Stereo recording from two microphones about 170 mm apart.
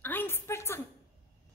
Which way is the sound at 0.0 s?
10° left (ahead or behind).